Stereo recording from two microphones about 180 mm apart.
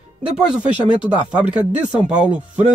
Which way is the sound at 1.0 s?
5° right (ahead or behind).